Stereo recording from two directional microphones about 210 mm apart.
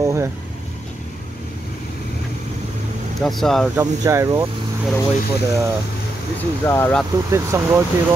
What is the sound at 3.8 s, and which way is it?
Speech, 15° right (ahead or behind).